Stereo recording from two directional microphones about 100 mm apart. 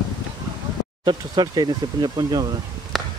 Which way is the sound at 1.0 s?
45° right (ahead or behind).